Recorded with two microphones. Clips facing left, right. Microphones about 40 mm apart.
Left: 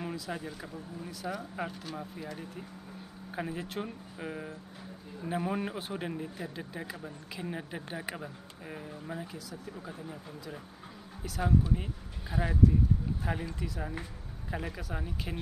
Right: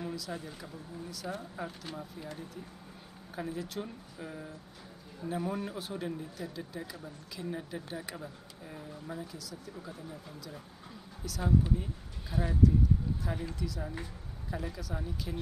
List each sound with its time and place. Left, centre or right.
0.0 s a sound: left
0.5 s speech: left
1.6 s speech: left